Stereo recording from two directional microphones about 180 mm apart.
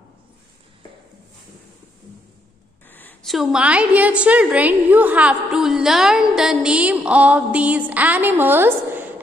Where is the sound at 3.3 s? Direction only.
5° right (ahead or behind).